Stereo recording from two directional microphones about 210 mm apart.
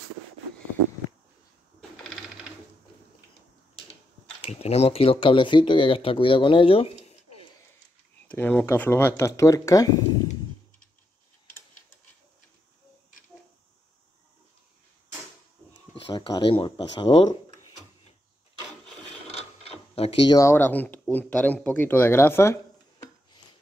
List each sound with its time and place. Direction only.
1.8 s sewing machine: centre (ahead or behind)
4.4 s speech: 30° left (ahead or behind)
8.3 s speech: 10° left (ahead or behind)
15.9 s speech: 20° left (ahead or behind)
19.2 s mechanisms: 30° left (ahead or behind)
20.3 s speech: 10° left (ahead or behind)